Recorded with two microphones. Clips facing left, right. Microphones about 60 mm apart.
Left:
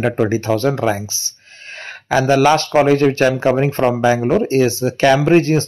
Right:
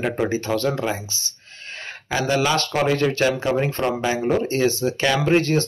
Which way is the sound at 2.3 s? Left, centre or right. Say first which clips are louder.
Left 8 dB; left.